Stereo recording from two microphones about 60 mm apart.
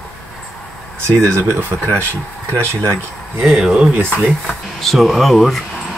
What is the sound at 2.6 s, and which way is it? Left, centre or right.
Speech, right.